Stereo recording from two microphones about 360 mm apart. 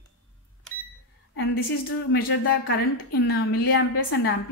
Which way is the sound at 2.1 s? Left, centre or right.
Left.